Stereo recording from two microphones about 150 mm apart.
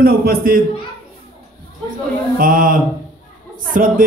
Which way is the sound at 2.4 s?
70° right (ahead or behind).